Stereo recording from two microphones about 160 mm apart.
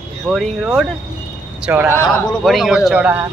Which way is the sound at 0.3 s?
Centre (ahead or behind).